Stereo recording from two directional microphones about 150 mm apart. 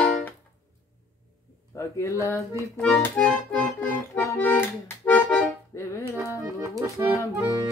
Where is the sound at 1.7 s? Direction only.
20° left (ahead or behind).